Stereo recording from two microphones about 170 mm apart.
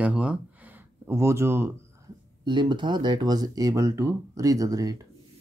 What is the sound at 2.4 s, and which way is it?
Speech, 25° right (ahead or behind).